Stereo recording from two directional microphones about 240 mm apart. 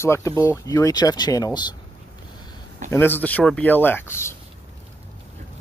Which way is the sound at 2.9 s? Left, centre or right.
Centre.